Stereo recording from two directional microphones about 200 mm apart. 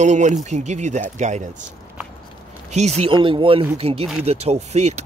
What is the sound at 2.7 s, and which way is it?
Speech, 35° right (ahead or behind).